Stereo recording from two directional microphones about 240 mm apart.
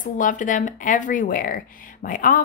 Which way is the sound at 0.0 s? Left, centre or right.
Left.